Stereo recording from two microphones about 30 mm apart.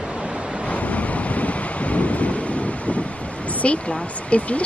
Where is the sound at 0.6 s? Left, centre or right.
Left.